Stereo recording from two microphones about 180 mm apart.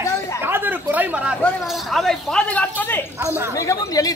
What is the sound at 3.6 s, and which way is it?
Speech, 20° left (ahead or behind).